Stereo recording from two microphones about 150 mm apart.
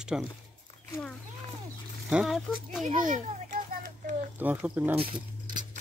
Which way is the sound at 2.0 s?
Centre (ahead or behind).